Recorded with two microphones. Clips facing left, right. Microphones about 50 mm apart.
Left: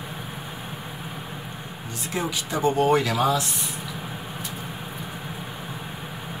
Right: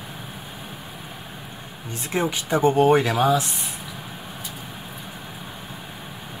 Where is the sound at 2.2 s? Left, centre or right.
Right.